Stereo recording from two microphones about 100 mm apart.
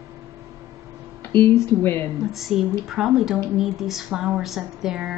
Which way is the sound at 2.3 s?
5° right (ahead or behind).